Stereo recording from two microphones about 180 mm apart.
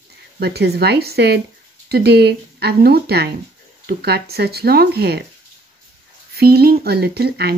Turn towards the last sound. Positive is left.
turn(degrees=-60)  # may be behind; listen again after turning